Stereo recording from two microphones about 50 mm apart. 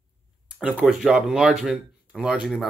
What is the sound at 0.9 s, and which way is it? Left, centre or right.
Speech, centre.